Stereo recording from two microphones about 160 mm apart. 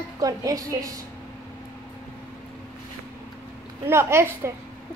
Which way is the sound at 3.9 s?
15° right (ahead or behind).